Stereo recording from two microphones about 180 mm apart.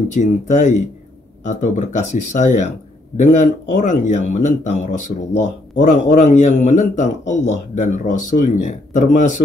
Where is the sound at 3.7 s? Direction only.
45° left (ahead or behind).